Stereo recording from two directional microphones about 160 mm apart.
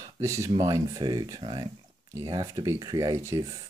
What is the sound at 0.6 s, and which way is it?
Speech, 20° right (ahead or behind).